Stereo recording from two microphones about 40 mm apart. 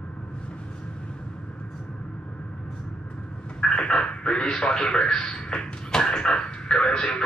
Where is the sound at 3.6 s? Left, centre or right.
Centre.